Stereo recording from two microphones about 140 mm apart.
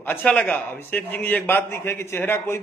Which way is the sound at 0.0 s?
10° left (ahead or behind).